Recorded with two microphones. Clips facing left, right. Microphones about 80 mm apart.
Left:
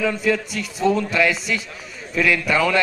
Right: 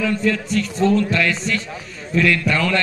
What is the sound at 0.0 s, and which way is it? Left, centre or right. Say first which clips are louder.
A man's voice: even; centre.